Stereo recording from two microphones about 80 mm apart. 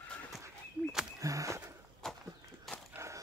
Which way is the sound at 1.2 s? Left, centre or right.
Right.